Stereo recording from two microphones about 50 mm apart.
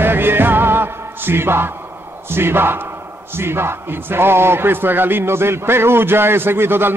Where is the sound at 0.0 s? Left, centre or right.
Right.